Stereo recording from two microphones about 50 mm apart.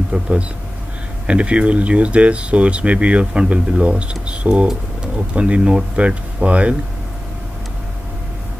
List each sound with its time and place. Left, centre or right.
0.1 s speech: right
5.9 s speech: right